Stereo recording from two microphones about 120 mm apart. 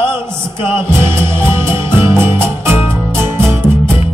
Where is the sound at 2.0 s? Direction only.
20° right (ahead or behind).